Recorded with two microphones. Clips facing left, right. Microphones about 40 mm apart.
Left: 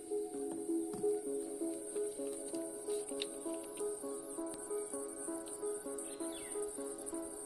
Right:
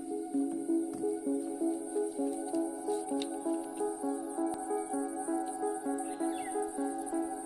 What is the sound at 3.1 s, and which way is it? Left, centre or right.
Music, left.